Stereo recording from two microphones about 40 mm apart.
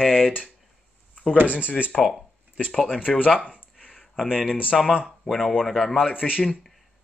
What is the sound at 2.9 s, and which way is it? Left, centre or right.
Speech, left.